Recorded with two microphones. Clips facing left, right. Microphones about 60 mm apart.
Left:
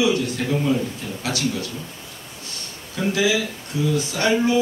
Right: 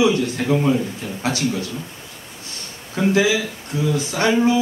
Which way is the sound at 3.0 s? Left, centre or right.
Right.